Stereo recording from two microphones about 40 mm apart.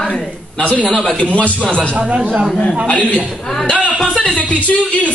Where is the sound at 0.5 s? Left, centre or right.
Left.